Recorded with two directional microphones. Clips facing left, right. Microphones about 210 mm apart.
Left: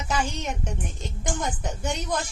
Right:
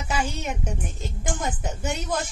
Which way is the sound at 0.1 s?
10° right (ahead or behind).